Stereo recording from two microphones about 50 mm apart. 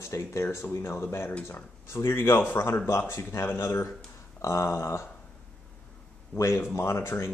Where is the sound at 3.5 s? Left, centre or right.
Left.